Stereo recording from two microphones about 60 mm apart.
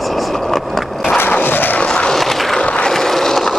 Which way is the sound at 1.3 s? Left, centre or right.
Left.